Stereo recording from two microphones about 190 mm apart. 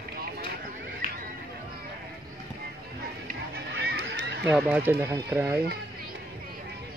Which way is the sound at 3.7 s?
60° right (ahead or behind).